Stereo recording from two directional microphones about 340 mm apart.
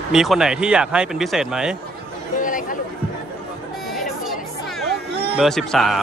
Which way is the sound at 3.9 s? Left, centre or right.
Centre.